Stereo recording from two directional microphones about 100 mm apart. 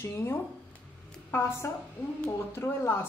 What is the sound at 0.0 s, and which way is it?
Speech, 25° left (ahead or behind).